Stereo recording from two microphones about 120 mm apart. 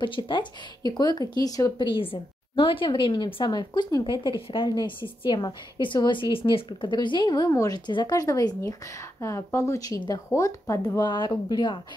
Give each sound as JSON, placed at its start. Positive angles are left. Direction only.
{"t": 0.0, "sound": "speech", "side_deg": 45}